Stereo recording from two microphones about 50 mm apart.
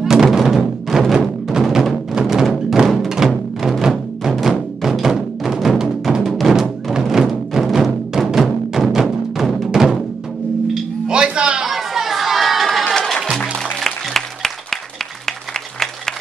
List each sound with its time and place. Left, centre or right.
0.0 s music: centre
2.4 s music: centre
3.1 s music: centre
11.6 s crowd: centre
12.9 s music: centre
13.6 s applause: centre